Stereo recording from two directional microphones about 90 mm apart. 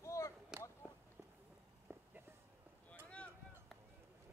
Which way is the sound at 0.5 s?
5° right (ahead or behind).